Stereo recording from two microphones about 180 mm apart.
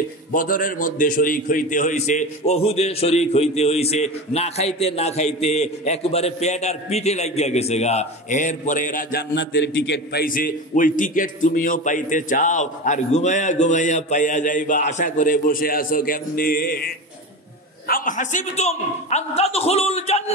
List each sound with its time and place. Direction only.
0.3 s a man's voice: 50° left (ahead or behind)
9.3 s a man's voice: 85° left
10.2 s a man's voice: 50° left (ahead or behind); by 20.3 s 35° left (ahead or behind)